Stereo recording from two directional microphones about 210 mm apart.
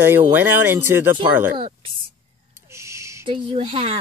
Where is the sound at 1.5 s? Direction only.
25° right (ahead or behind).